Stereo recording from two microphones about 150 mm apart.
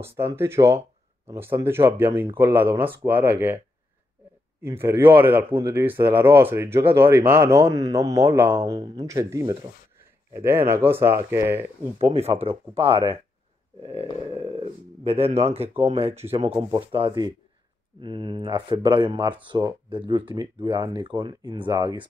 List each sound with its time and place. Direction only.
0.0 s speech: 15° right (ahead or behind)
8.7 s speech: 35° right (ahead or behind)
9.0 s speech: 20° right (ahead or behind)
12.0 s speech: 40° right (ahead or behind)
14.3 s speech: 40° right (ahead or behind)